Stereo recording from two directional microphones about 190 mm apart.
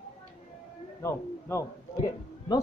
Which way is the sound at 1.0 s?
15° left (ahead or behind).